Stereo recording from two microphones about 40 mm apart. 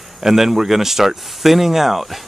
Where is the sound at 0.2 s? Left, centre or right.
Centre.